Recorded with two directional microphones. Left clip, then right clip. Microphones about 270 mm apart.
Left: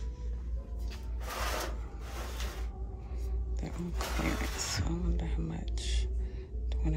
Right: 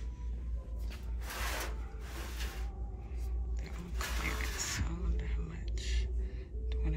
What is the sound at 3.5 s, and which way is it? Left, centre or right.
Roaring cats, centre.